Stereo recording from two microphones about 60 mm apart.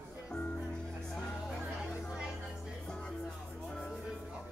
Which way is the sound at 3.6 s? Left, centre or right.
Centre.